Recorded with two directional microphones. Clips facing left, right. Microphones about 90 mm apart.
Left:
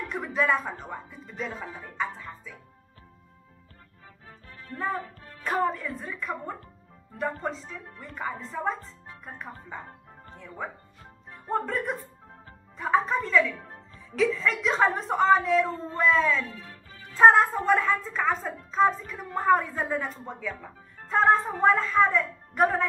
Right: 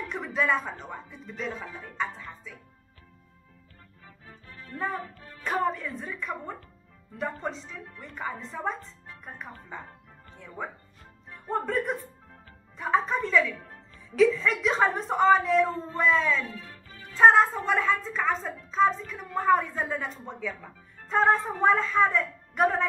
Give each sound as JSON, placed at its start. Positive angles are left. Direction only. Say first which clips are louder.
{"t": 0.1, "sound": "a woman's voice", "louder": "left 1 dB", "side_deg": 0}
{"t": 5.4, "sound": "a woman's voice", "louder": "left 1 dB", "side_deg": 0}
{"t": 10.3, "sound": "a woman's voice", "louder": "even", "side_deg": 0}
{"t": 11.2, "sound": "music", "louder": "even", "side_deg": 35}
{"t": 11.5, "sound": "a woman's voice", "louder": "even", "side_deg": 0}